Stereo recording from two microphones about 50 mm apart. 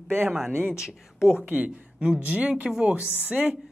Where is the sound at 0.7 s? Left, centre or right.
Centre.